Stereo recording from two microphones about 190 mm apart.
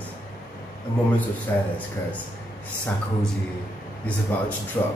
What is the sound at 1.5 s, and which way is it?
Speech, 10° left (ahead or behind).